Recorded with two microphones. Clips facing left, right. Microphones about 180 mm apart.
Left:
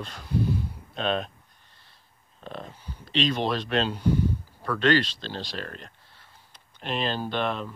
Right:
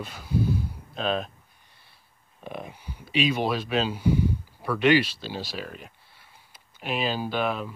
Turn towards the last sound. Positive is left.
turn(degrees=-5)  # may be behind; listen again after turning